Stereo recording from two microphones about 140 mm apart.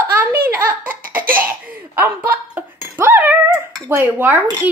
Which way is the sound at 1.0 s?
90° right.